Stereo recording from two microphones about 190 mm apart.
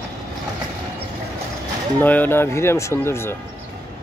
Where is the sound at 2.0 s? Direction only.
10° left (ahead or behind).